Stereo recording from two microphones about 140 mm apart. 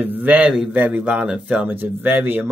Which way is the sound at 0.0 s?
10° right (ahead or behind).